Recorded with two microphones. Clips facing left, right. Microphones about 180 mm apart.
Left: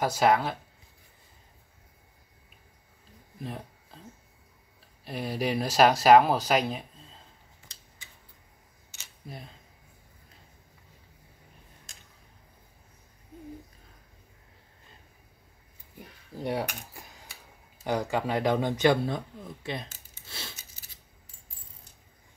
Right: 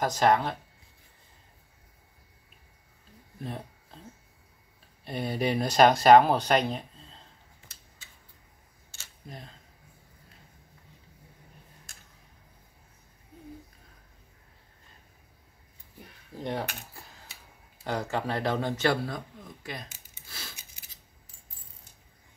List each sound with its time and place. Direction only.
0.0 s speech: 5° left (ahead or behind)
3.3 s a sound: centre (ahead or behind)
5.0 s speech: centre (ahead or behind)
8.9 s camera: 15° left (ahead or behind)
16.3 s speech: 10° left (ahead or behind); by 20.5 s 25° left (ahead or behind)